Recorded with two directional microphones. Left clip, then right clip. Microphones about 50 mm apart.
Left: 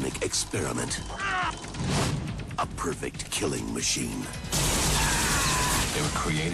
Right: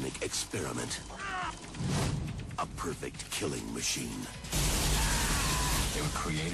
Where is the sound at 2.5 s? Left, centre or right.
Centre.